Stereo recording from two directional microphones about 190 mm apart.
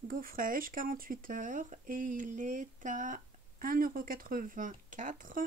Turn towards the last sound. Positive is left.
turn(degrees=-45)  # may be behind; listen again after turning